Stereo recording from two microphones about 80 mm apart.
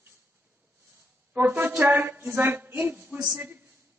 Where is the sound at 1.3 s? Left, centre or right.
Right.